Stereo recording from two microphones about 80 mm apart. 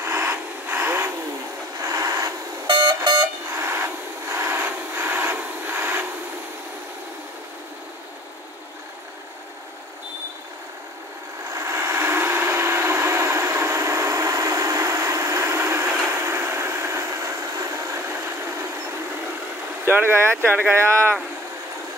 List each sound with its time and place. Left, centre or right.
0.0 s vehicle: right
1.8 s train: right
2.6 s vehicle: right
3.5 s a sound: right
11.5 s vehicle: right
19.8 s speech: right